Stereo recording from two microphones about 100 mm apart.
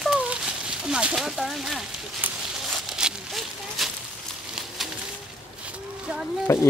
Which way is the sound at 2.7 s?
5° right (ahead or behind).